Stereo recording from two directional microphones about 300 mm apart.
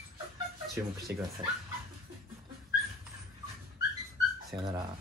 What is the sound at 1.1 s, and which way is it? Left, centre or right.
Speech, right.